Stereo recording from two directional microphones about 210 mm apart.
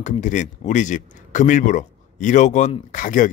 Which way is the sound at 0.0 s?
35° left (ahead or behind).